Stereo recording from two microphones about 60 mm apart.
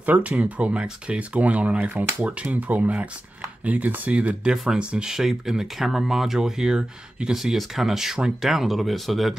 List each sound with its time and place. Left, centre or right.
0.0 s speech: right; by 9.3 s centre